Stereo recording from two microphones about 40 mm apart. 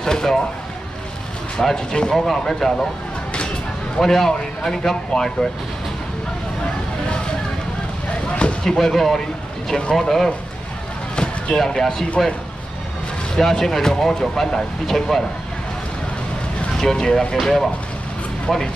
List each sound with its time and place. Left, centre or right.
0.0 s speech: centre
1.6 s speech: centre
4.0 s speech: centre
8.3 s a sound: left
8.6 s speech: centre
11.5 s speech: centre
13.4 s speech: centre
16.7 s speech: centre